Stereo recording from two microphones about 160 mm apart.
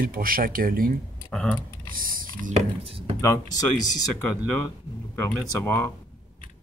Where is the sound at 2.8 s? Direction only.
35° right (ahead or behind).